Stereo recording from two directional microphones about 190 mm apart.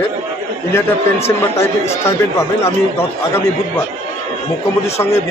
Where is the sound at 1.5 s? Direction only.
15° left (ahead or behind).